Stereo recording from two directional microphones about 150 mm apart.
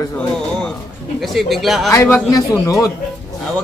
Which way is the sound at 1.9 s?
15° left (ahead or behind).